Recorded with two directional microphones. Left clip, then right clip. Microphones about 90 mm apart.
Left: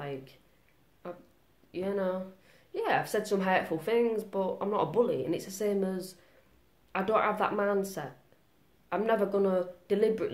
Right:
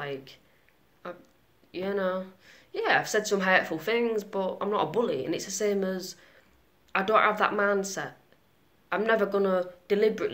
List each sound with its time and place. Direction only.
0.0 s a woman's voice: 25° left (ahead or behind)